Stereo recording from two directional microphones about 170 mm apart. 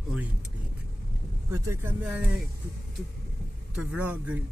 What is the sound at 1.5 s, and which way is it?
Speech, 15° right (ahead or behind).